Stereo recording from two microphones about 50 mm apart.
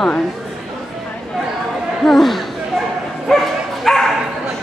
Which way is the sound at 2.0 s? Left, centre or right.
Centre.